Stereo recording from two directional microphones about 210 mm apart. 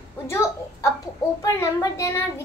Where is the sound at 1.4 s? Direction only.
15° left (ahead or behind).